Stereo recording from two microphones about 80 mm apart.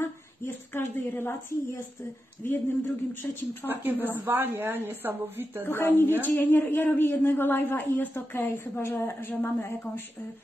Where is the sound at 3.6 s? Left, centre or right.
Right.